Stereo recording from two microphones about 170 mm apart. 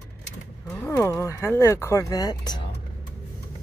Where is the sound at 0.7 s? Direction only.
15° left (ahead or behind).